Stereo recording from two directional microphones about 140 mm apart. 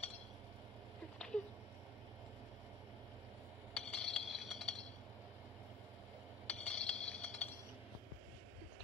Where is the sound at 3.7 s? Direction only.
5° left (ahead or behind).